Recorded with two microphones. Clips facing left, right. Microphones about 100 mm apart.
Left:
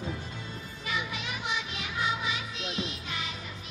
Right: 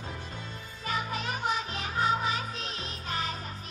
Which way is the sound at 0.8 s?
40° right (ahead or behind).